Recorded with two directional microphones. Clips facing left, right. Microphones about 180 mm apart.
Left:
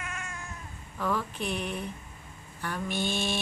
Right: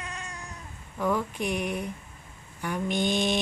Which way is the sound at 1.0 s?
15° right (ahead or behind).